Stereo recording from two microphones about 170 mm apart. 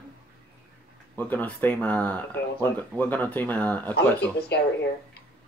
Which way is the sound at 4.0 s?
75° left (ahead or behind).